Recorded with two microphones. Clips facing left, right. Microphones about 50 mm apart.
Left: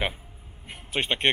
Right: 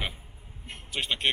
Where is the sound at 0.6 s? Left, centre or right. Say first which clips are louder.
Left 4 dB; centre.